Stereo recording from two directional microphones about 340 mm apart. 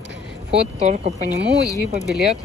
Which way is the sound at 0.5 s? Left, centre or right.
Right.